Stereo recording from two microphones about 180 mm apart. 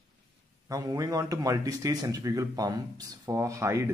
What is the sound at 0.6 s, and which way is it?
Speech, 20° right (ahead or behind).